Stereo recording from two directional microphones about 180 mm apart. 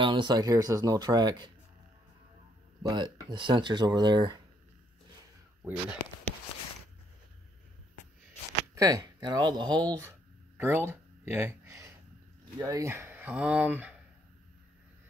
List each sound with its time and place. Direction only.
0.0 s speech: 25° right (ahead or behind)
2.9 s speech: 25° right (ahead or behind)
5.6 s speech: 10° right (ahead or behind)
8.7 s speech: 20° right (ahead or behind)
10.6 s a sound: 10° right (ahead or behind)
12.5 s speech: 20° right (ahead or behind)